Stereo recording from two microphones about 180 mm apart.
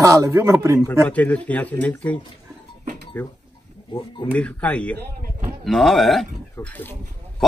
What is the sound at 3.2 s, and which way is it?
Speech, 10° left (ahead or behind).